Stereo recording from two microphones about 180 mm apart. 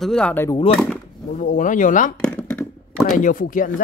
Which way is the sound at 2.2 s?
5° left (ahead or behind).